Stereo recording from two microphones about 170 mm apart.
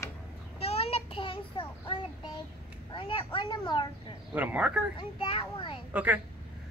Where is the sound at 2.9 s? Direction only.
30° left (ahead or behind).